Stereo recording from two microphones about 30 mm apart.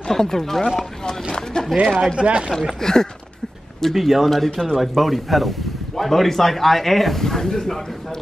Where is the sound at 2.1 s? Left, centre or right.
Right.